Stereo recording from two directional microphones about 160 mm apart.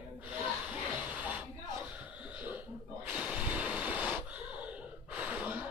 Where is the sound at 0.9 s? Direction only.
10° right (ahead or behind).